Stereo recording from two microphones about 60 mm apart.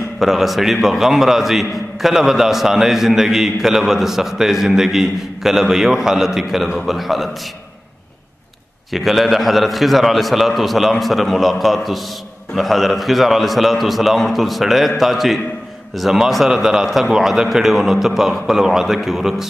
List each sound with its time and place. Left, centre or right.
0.2 s a man's voice: centre
8.9 s a man's voice: centre